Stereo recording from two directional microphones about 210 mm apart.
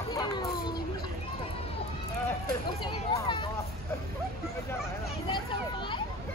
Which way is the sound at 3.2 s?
25° left (ahead or behind).